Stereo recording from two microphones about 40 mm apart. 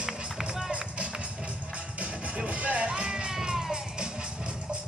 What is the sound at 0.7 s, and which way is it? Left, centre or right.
Music, right.